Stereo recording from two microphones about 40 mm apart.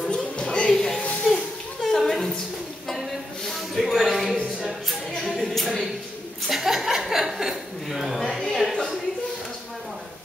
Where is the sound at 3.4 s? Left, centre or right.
Centre.